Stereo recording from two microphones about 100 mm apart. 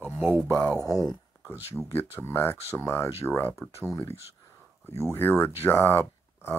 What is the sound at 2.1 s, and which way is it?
Speech, 25° left (ahead or behind).